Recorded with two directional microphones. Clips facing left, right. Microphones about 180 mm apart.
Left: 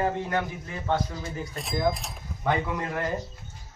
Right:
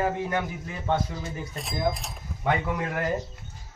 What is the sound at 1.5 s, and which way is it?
Speech, centre (ahead or behind).